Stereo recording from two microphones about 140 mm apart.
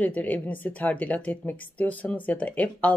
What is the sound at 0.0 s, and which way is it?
Speech, 10° left (ahead or behind).